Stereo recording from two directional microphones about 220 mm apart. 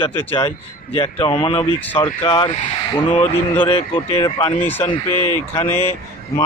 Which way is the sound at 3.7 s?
25° left (ahead or behind).